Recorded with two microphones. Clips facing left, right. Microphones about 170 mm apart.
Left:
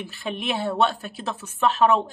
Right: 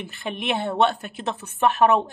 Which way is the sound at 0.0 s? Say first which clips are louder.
Even; 20° right (ahead or behind).